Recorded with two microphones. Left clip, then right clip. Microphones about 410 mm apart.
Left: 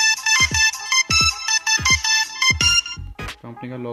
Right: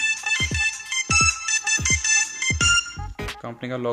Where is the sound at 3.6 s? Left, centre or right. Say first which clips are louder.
Right 4 dB; right.